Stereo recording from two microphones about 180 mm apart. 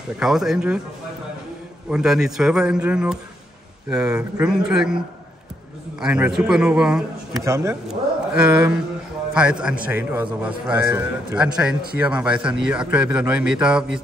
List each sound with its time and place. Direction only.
0.2 s a man's voice: centre (ahead or behind)
1.9 s a man's voice: 5° right (ahead or behind)
7.4 s a man's voice: 15° right (ahead or behind)